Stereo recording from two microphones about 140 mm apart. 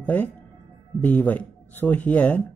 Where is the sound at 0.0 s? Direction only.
10° left (ahead or behind).